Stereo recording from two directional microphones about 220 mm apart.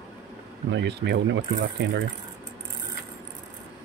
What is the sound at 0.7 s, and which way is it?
Speech, 50° right (ahead or behind).